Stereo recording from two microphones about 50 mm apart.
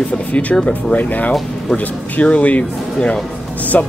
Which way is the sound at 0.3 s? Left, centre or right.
Left.